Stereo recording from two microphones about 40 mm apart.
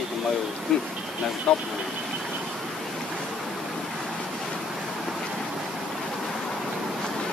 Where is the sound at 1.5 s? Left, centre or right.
Left.